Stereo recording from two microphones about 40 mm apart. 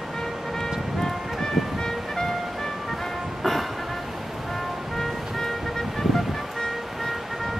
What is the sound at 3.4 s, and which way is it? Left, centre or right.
Music, centre.